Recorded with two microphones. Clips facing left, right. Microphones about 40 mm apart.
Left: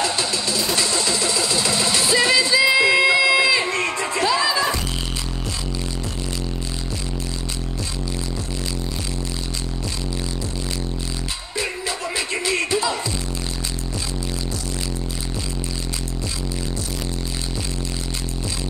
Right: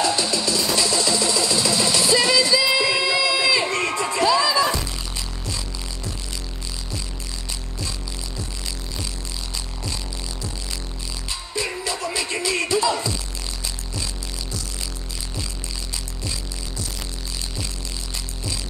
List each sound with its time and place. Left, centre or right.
0.2 s music: left
0.7 s a sound: left
3.6 s crowd: centre
4.3 s music: left
11.5 s music: left
12.7 s music: centre